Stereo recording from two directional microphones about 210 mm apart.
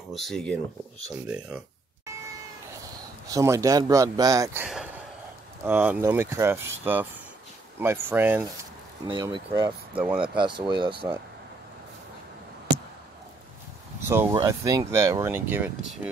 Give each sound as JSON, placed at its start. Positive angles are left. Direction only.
{"t": 0.1, "sound": "speech", "side_deg": 0}
{"t": 2.8, "sound": "speech", "side_deg": -15}
{"t": 4.6, "sound": "a sound", "side_deg": -5}
{"t": 5.7, "sound": "speech", "side_deg": -10}
{"t": 9.9, "sound": "speech", "side_deg": -5}
{"t": 10.3, "sound": "speech", "side_deg": -20}
{"t": 14.0, "sound": "speech", "side_deg": -10}